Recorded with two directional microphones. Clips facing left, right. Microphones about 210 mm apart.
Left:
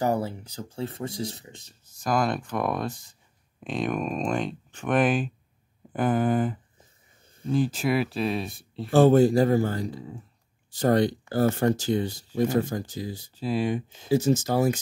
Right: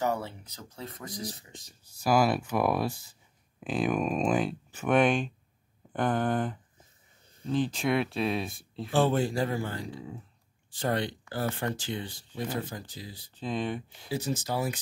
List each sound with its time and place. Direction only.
0.0 s speech: 35° left (ahead or behind)
2.0 s speech: 5° right (ahead or behind)
8.9 s speech: 40° left (ahead or behind)
13.4 s speech: 10° left (ahead or behind)
14.0 s speech: 45° left (ahead or behind)